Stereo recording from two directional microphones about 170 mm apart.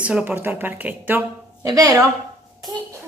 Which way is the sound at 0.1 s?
10° right (ahead or behind).